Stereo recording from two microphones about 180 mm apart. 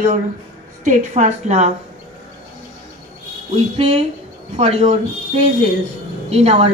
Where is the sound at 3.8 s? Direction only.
35° right (ahead or behind).